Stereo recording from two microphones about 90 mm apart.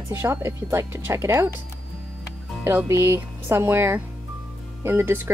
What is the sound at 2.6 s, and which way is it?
A woman's voice, 30° right (ahead or behind).